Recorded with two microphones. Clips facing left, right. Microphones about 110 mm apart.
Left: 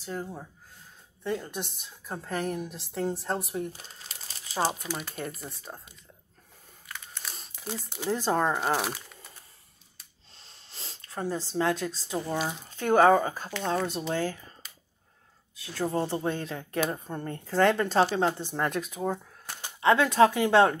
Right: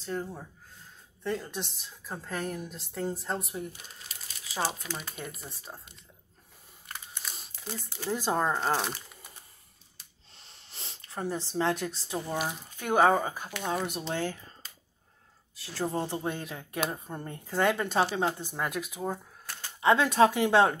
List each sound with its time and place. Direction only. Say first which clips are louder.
0.0 s a woman's voice: right 1 dB; 5° left (ahead or behind)
3.7 s speech: left 1 dB; 35° left (ahead or behind)
4.9 s a woman's voice: left 4 dB; centre (ahead or behind)
7.5 s speech: left 4 dB; 15° left (ahead or behind)
8.1 s a woman's voice: left 2 dB; 5° right (ahead or behind)
8.5 s speech: left 1 dB; 10° left (ahead or behind)
9.1 s a sound: left 1 dB; 15° right (ahead or behind)
10.7 s a sound: left 1 dB; 20° right (ahead or behind)
11.1 s speech: left 2 dB; 15° right (ahead or behind)
12.3 s speech: left 1 dB; 5° right (ahead or behind)
15.5 s a sound: left 2 dB; 30° right (ahead or behind)
16.2 s speech: left 3 dB; 15° right (ahead or behind)
19.4 s a sound: left 2 dB; 20° left (ahead or behind)
19.8 s speech: left 2 dB; 20° right (ahead or behind)